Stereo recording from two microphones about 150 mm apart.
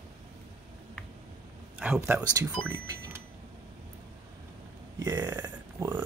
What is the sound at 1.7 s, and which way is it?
Speech, 5° right (ahead or behind).